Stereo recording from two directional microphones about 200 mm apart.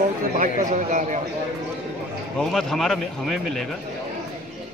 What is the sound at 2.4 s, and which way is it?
A man's voice, centre (ahead or behind).